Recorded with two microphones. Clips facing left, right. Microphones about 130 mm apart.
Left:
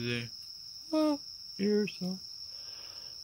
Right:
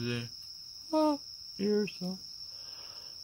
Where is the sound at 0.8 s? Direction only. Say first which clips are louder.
Right 1 dB; 20° right (ahead or behind).